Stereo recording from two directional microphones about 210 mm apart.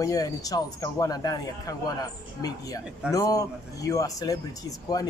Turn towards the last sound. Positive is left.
turn(degrees=15)  # may be behind; listen again after turning